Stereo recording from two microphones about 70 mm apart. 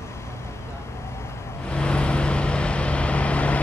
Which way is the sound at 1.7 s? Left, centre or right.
Centre.